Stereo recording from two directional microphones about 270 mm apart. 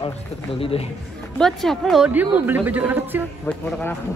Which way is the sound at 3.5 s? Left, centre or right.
Centre.